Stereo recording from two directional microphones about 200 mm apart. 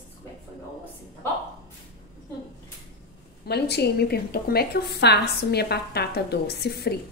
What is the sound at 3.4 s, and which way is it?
A woman's voice, 55° left (ahead or behind).